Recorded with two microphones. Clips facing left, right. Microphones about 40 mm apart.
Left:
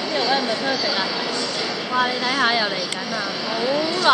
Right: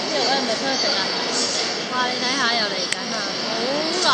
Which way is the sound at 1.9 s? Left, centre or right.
Centre.